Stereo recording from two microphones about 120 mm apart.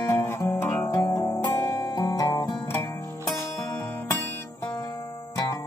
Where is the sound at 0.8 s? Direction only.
30° left (ahead or behind).